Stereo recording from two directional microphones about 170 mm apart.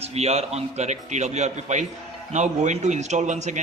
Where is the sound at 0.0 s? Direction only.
40° right (ahead or behind).